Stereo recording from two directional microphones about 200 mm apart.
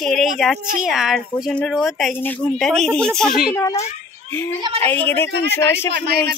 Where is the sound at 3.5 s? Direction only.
15° left (ahead or behind).